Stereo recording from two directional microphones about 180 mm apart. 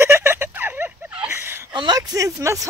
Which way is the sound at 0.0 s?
15° right (ahead or behind).